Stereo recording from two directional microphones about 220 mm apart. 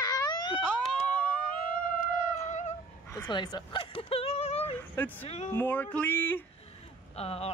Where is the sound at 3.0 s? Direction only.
15° left (ahead or behind).